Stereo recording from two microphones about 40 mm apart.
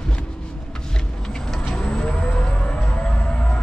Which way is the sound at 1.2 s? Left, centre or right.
Centre.